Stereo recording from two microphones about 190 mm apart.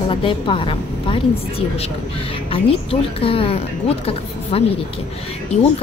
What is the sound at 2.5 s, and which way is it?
Speech, 30° left (ahead or behind).